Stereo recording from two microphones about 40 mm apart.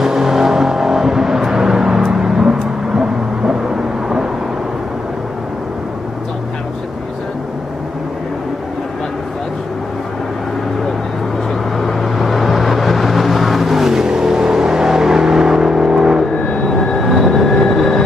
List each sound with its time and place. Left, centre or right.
0.0 s vehicle: centre
11.8 s vehicle: centre
17.1 s vehicle: centre